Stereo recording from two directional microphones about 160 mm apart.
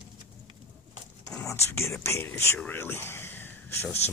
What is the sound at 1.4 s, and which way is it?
Speech, 15° left (ahead or behind).